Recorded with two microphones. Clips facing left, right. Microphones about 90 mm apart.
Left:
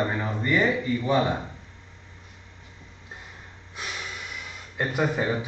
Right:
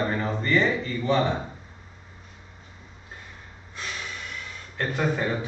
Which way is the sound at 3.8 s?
15° left (ahead or behind).